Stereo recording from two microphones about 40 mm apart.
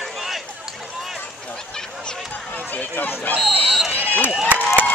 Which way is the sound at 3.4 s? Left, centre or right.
Centre.